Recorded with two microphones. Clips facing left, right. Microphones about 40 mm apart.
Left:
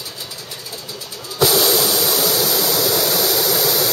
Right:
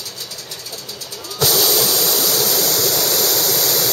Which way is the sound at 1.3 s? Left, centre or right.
Centre.